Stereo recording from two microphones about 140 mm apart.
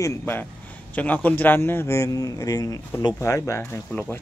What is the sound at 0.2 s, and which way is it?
A man's voice, 10° left (ahead or behind).